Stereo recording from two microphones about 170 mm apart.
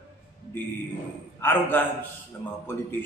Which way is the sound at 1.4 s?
10° left (ahead or behind).